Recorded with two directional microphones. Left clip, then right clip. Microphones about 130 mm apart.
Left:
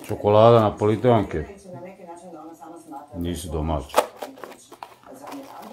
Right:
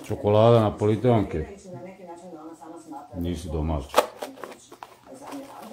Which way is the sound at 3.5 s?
90° left.